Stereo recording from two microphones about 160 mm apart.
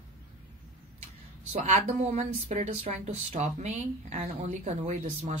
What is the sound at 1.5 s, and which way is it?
A woman's voice, 45° right (ahead or behind).